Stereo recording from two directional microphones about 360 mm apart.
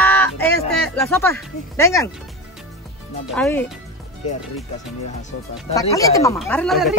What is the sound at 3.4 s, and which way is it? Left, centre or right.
Speech, centre.